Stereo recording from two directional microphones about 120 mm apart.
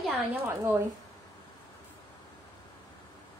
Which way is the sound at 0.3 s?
15° right (ahead or behind).